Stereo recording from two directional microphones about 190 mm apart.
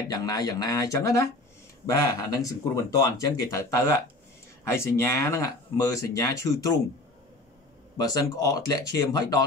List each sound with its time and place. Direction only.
0.1 s speech: 20° left (ahead or behind)
8.0 s speech: 20° left (ahead or behind)